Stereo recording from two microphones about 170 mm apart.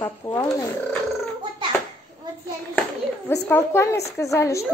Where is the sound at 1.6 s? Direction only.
30° right (ahead or behind).